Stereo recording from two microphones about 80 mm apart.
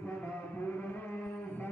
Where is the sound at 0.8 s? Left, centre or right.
Left.